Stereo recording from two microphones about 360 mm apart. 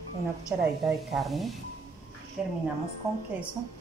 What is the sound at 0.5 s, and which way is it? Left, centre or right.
A woman's voice, centre.